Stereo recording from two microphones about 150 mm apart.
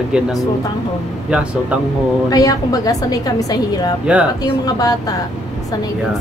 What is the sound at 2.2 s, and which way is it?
A woman's voice, 25° left (ahead or behind).